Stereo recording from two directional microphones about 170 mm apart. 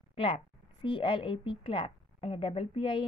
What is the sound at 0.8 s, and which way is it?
A woman's voice, 30° left (ahead or behind).